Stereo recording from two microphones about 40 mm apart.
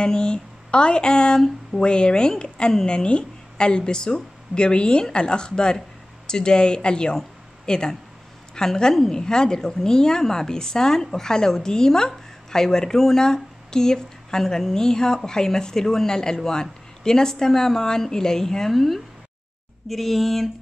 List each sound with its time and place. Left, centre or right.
0.0 s a woman's voice: left
18.7 s speech: centre